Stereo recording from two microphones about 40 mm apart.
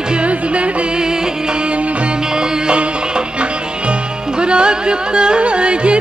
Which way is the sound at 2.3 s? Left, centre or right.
Right.